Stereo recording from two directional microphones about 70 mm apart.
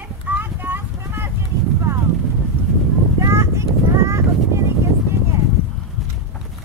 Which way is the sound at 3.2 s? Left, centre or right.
Right.